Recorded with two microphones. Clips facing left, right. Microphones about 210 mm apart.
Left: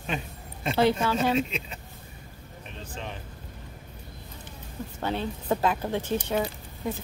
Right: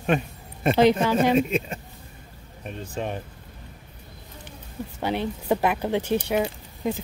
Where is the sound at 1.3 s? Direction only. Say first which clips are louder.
Right 6 dB; 50° right (ahead or behind).